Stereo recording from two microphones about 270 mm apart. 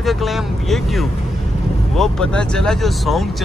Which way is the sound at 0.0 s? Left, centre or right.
Centre.